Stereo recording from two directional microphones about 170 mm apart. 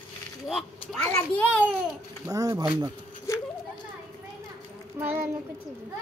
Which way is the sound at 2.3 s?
20° right (ahead or behind).